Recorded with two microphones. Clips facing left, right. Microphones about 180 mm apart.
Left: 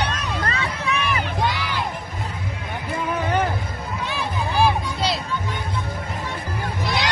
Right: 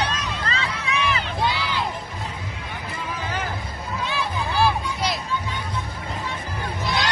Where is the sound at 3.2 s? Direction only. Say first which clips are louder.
Left 8 dB; 60° left (ahead or behind).